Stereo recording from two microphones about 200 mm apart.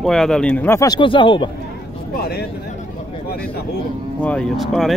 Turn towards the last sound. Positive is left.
turn(degrees=0)  # may be behind; listen again after turning